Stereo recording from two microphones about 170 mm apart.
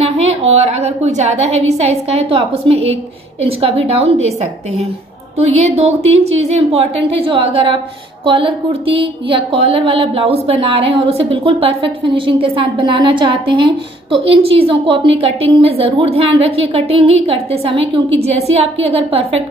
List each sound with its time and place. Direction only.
0.0 s speech: 35° right (ahead or behind)
5.4 s speech: 40° right (ahead or behind)